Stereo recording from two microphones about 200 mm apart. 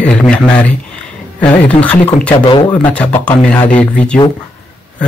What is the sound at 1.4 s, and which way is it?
Speech, 5° left (ahead or behind).